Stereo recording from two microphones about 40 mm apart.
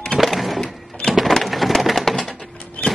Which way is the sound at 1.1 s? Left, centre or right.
Centre.